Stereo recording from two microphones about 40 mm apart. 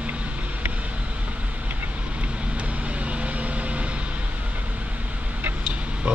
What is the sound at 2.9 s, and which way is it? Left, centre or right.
Vehicle, right.